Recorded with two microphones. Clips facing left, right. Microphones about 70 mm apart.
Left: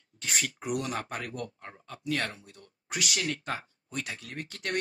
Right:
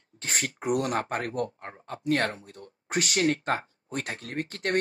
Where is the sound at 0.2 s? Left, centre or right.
Right.